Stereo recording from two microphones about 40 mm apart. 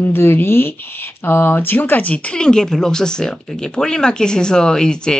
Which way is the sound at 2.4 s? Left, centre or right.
Centre.